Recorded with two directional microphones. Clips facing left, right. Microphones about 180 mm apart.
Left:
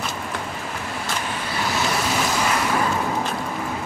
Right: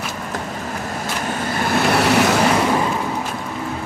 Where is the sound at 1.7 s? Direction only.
60° right (ahead or behind).